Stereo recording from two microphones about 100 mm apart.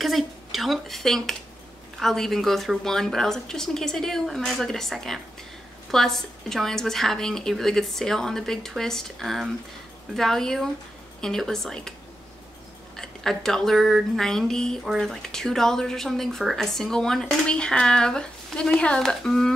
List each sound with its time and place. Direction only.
0.0 s a sound: centre (ahead or behind)
2.0 s speech: 5° left (ahead or behind)
12.9 s speech: 5° left (ahead or behind)